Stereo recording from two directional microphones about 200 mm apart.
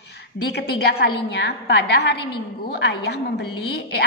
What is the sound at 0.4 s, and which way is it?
A woman's voice, 55° left (ahead or behind).